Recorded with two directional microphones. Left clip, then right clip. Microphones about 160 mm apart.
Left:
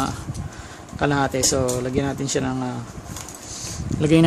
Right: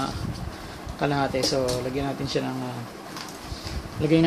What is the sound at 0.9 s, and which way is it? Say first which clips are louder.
Speech: left 4 dB; 55° left (ahead or behind).